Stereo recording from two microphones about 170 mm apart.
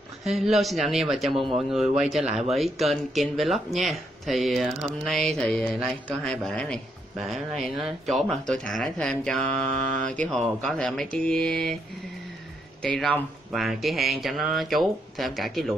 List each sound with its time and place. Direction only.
0.2 s speech: centre (ahead or behind)
12.8 s speech: 5° left (ahead or behind)